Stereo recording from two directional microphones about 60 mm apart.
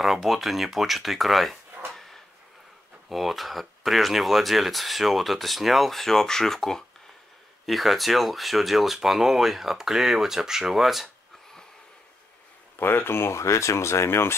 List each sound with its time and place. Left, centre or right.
0.0 s speech: centre
1.9 s a sound: centre
3.1 s speech: centre
12.7 s speech: left